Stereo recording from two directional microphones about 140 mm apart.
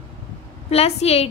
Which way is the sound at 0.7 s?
45° left (ahead or behind).